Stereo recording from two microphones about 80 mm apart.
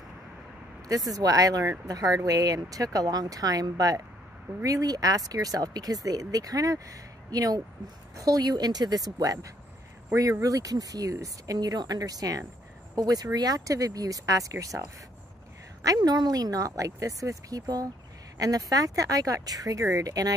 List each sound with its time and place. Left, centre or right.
0.8 s speech: right
15.8 s speech: right